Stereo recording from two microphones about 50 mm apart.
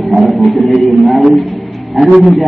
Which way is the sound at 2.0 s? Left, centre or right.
Centre.